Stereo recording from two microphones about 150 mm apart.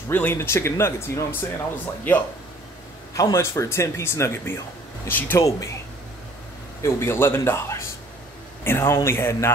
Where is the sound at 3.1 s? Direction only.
20° left (ahead or behind).